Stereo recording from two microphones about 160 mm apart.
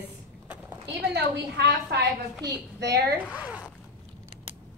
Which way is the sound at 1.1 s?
90° right.